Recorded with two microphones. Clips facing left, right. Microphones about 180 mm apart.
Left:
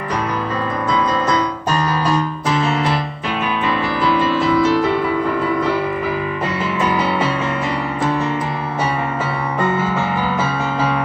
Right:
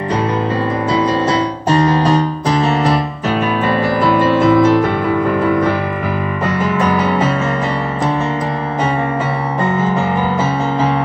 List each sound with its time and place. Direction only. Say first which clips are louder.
0.9 s music: right 3 dB; 30° right (ahead or behind); by 4.9 s 50° right (ahead or behind)